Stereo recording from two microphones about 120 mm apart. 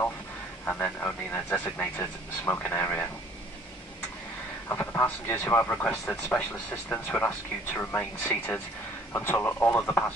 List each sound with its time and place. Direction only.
0.7 s a man's voice: 15° left (ahead or behind)
4.6 s a man's voice: 20° left (ahead or behind)